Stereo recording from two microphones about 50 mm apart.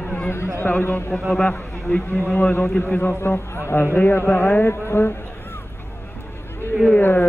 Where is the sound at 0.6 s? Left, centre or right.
Left.